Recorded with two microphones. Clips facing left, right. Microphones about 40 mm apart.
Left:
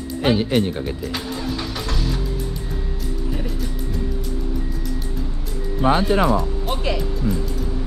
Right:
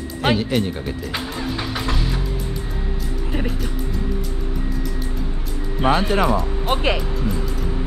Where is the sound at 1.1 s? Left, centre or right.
Centre.